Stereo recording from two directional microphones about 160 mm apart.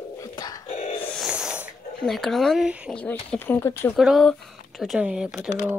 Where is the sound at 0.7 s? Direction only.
40° left (ahead or behind).